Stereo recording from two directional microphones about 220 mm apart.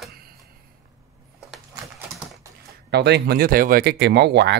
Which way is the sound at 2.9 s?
50° right (ahead or behind).